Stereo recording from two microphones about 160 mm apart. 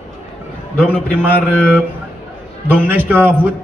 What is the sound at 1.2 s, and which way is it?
Speech, 10° right (ahead or behind).